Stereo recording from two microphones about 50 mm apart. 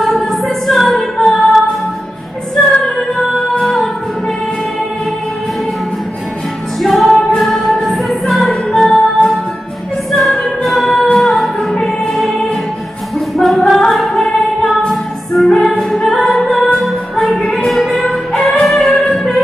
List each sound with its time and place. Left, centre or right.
0.0 s music: centre
3.6 s music: centre
6.8 s music: centre
13.4 s music: centre
17.4 s music: centre
17.6 s music: centre
18.0 s music: centre